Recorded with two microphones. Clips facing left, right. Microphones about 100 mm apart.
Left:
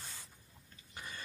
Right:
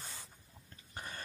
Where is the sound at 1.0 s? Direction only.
50° right (ahead or behind).